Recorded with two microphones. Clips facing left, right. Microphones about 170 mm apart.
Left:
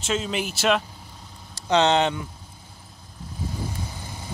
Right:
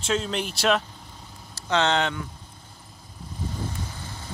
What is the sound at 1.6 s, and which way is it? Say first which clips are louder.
Speech: left 4 dB; 20° left (ahead or behind).